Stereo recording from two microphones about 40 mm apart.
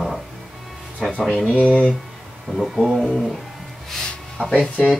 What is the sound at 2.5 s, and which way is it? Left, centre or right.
Speech, centre.